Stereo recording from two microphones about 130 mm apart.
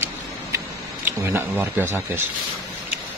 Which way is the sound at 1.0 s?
15° right (ahead or behind).